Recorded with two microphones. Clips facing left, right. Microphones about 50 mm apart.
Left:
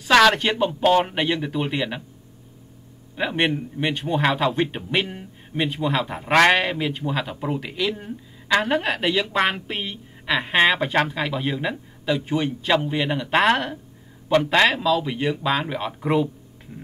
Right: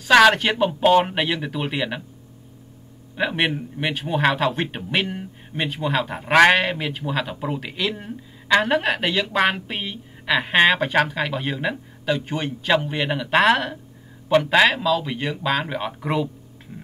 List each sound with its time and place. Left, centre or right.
0.1 s speech: centre
3.2 s a woman's voice: centre